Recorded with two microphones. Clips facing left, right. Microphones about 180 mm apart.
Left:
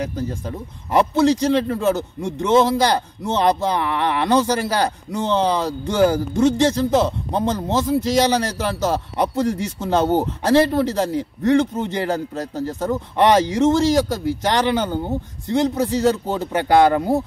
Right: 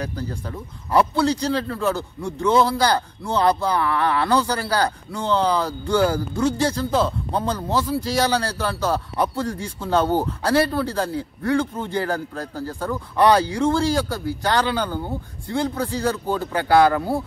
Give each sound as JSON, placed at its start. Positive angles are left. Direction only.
{"t": 0.0, "sound": "a man's voice", "side_deg": 20}